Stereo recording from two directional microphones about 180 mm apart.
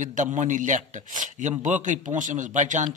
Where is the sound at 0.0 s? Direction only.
45° right (ahead or behind).